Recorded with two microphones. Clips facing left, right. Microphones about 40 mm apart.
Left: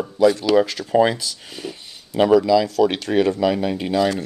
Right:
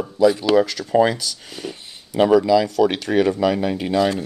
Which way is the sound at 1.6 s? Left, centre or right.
Centre.